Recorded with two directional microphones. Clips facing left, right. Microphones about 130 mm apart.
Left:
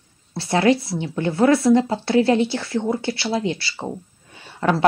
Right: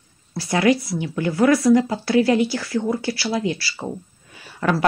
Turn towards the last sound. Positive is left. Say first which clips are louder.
# left 2 dB
turn(degrees=25)  # may be behind; listen again after turning